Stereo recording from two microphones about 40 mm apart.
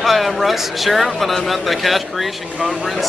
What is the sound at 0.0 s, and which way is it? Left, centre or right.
Speech, centre.